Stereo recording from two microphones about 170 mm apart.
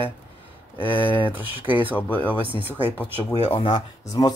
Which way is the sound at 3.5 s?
35° left (ahead or behind).